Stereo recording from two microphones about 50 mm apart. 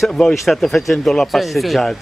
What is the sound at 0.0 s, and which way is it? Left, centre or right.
Speech, centre.